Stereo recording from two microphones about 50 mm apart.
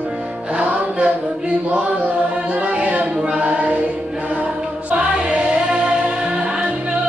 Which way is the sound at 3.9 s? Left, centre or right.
Centre.